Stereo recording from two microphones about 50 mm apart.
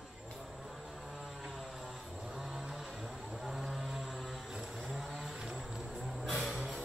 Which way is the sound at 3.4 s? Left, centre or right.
Centre.